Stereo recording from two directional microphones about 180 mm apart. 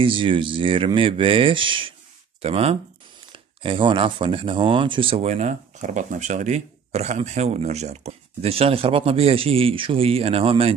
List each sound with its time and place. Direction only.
0.0 s speech: 30° right (ahead or behind)